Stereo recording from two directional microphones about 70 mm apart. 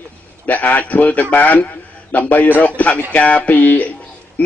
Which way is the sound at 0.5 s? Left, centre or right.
Left.